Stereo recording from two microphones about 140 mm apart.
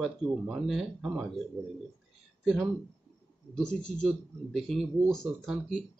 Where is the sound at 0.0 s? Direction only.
Centre (ahead or behind).